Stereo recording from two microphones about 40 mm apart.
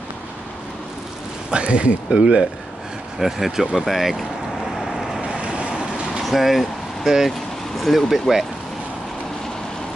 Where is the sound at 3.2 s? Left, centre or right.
Centre.